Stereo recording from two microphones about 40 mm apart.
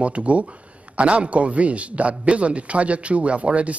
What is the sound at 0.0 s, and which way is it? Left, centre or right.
A man's voice, right.